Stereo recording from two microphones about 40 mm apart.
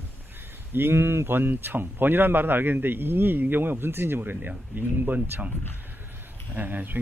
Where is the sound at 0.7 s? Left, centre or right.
Right.